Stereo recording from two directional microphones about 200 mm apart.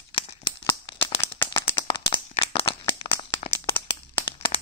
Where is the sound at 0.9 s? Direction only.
25° left (ahead or behind).